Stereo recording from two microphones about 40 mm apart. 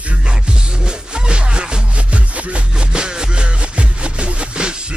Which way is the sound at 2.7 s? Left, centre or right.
Right.